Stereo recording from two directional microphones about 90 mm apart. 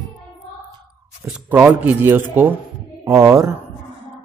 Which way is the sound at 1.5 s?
20° right (ahead or behind).